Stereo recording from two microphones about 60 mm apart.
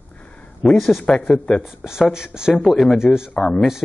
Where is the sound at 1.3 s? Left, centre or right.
Centre.